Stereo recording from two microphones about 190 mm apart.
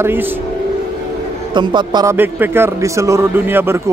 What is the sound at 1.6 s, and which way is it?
Speech, 25° right (ahead or behind).